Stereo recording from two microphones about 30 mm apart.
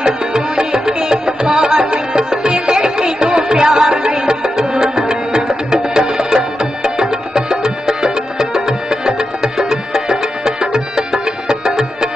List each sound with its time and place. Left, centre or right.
0.0 s music: right
4.6 s music: right